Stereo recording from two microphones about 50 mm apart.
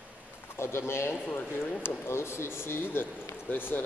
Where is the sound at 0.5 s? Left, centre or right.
Left.